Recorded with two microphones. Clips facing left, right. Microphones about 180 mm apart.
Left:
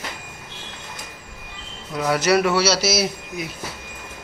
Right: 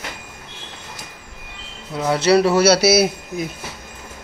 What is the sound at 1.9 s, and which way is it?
Speech, 25° right (ahead or behind).